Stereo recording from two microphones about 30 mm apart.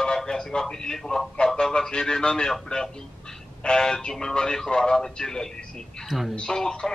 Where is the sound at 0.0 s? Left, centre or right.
Left.